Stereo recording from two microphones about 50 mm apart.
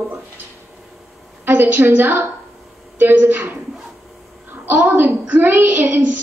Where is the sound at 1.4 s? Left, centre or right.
Right.